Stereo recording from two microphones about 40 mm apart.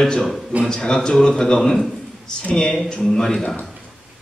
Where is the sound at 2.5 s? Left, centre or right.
Left.